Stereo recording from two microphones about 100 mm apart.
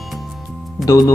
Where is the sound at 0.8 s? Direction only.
35° left (ahead or behind).